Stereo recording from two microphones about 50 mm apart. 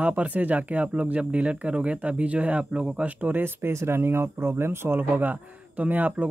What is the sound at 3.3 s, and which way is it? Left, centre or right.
Speech, right.